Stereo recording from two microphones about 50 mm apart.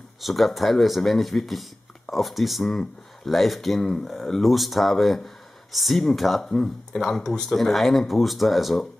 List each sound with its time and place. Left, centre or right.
0.2 s speech: centre